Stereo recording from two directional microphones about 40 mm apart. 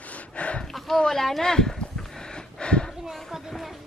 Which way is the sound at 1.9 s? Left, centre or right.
Centre.